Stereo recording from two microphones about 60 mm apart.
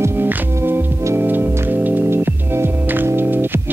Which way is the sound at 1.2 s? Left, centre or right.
Right.